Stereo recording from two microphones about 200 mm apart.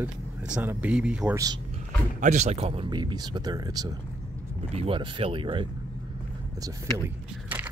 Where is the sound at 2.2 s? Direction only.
35° right (ahead or behind).